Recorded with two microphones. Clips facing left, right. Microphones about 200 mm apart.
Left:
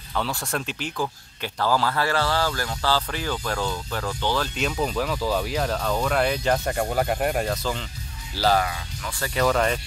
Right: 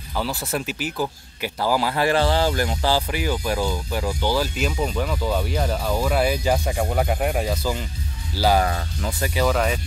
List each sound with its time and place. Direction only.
0.1 s speech: 5° right (ahead or behind)
8.6 s speech: 45° right (ahead or behind)
9.3 s speech: 5° right (ahead or behind)